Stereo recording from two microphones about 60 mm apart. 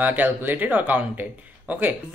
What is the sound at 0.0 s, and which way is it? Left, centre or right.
Speech, right.